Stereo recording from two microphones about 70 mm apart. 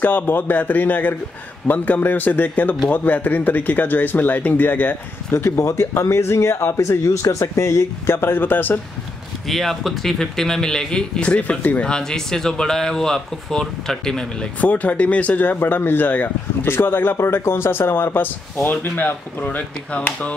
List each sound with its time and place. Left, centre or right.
0.0 s speech: left
5.3 s speech: left
6.8 s speech: left
9.5 s speech: centre
14.6 s speech: left